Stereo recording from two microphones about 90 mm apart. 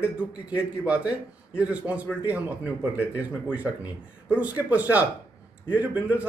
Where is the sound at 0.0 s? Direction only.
15° right (ahead or behind).